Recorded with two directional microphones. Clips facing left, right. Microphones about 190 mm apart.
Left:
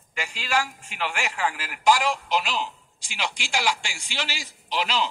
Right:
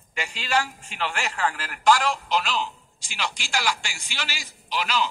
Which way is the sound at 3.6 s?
25° left (ahead or behind).